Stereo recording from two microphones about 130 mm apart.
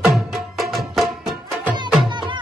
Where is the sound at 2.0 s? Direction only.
35° right (ahead or behind).